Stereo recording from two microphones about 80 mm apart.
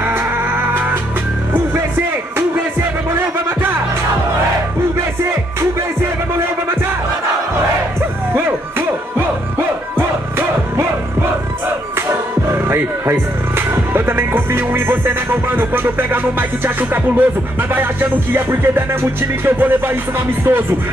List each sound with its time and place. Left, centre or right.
0.4 s music: right
2.8 s music: right
8.3 s music: right
12.1 s speech: right
18.3 s music: right